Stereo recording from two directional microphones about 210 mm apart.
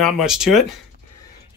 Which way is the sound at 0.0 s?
5° right (ahead or behind).